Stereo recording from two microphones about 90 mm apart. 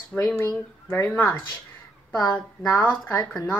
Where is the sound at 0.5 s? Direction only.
25° left (ahead or behind).